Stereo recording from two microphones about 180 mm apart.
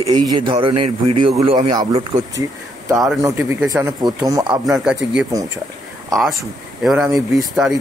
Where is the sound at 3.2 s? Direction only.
15° right (ahead or behind).